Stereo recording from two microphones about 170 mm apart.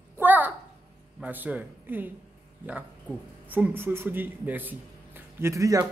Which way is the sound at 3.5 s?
10° right (ahead or behind).